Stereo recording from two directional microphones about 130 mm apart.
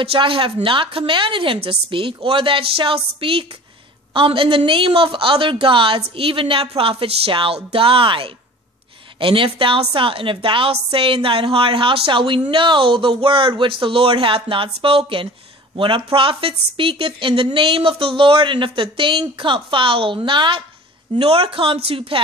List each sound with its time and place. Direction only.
0.0 s a woman's voice: 45° right (ahead or behind)